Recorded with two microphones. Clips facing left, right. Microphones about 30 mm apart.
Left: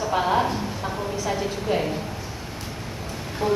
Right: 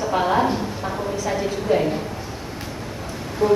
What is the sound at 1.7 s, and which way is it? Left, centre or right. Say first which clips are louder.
Speech: right 5 dB; centre.